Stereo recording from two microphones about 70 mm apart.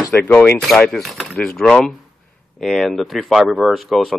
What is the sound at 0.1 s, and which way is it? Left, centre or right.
Speech, centre.